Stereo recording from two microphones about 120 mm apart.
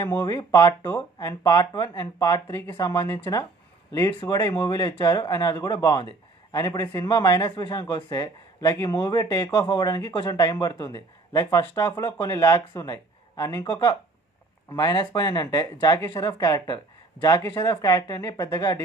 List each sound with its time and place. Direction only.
0.0 s speech: 20° left (ahead or behind)
2.4 s speech: 20° left (ahead or behind)